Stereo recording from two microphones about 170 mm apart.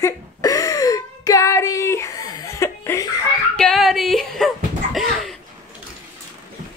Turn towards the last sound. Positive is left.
turn(degrees=0)  # may be behind; listen again after turning